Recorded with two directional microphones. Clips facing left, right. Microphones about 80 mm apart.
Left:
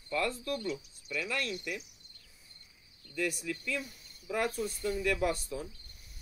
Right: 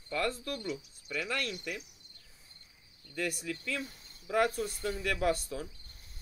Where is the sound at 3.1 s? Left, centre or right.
Right.